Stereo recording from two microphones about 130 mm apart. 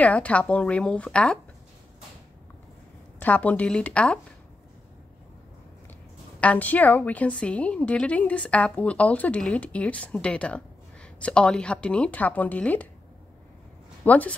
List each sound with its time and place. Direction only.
0.0 s a woman's voice: 10° left (ahead or behind)
3.2 s a woman's voice: 10° left (ahead or behind)
6.4 s a woman's voice: 10° left (ahead or behind)
14.0 s a woman's voice: 10° left (ahead or behind)